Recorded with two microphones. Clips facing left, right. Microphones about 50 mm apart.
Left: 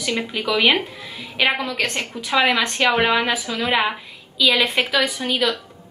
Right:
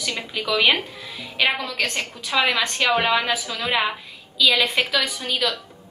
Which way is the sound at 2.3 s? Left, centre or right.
Centre.